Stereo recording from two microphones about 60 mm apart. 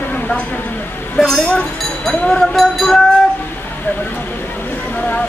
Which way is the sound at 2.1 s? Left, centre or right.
Centre.